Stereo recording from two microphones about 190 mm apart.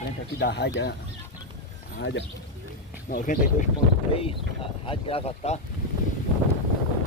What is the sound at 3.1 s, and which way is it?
Speech, 45° left (ahead or behind).